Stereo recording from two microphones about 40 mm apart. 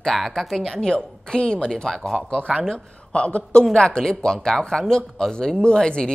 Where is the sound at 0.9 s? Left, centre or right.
Left.